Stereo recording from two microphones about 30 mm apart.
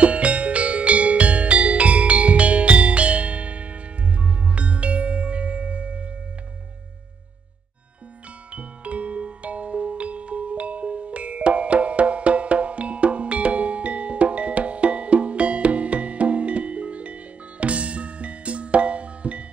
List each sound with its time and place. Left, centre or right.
0.0 s music: right
8.5 s music: right